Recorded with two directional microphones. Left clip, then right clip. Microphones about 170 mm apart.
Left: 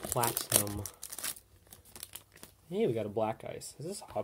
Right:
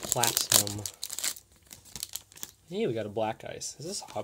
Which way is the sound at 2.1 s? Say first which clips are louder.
Right 9 dB; 55° right (ahead or behind).